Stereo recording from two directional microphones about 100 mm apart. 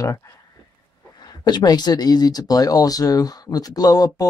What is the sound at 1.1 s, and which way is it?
Speech, 45° left (ahead or behind).